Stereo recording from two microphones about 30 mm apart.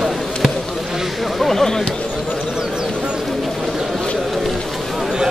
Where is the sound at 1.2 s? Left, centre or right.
Centre.